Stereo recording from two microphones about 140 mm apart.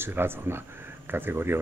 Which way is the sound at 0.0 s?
15° right (ahead or behind).